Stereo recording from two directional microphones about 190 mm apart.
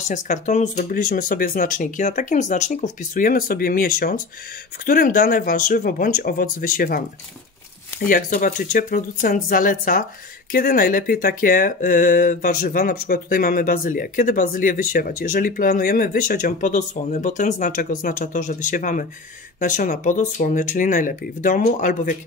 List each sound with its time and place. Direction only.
0.1 s speech: 40° left (ahead or behind)